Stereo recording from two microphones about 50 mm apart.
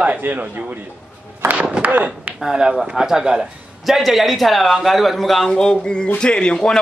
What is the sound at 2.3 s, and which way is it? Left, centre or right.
Speech, centre.